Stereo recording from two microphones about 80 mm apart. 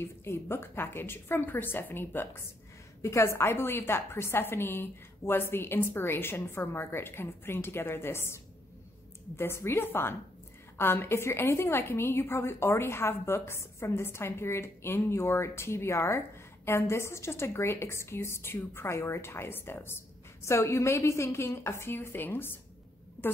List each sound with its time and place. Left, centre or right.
0.0 s a woman's voice: left
3.0 s a woman's voice: left
9.4 s a woman's voice: left